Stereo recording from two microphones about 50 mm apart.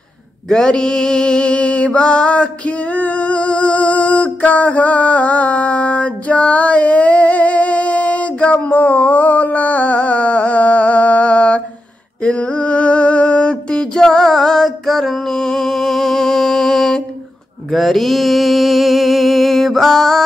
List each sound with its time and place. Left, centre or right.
0.5 s mantra: centre
12.2 s a sound: left
17.6 s mantra: centre